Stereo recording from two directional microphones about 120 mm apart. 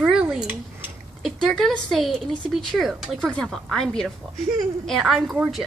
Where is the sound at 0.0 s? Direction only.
5° right (ahead or behind).